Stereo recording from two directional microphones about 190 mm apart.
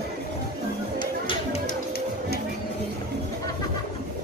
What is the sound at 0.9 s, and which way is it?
Music, 25° left (ahead or behind).